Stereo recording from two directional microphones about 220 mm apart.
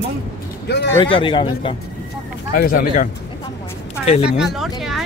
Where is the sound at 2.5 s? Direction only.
40° left (ahead or behind).